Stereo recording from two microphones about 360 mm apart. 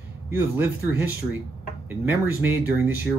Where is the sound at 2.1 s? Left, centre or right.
Centre.